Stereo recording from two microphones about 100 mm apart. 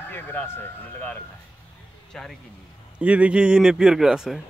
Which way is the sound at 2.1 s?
5° left (ahead or behind).